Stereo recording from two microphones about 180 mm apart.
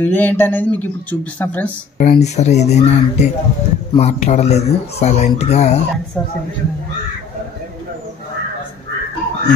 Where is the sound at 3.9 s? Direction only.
40° left (ahead or behind).